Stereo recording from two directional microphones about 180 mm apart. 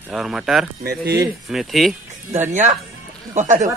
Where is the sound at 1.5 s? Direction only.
Centre (ahead or behind).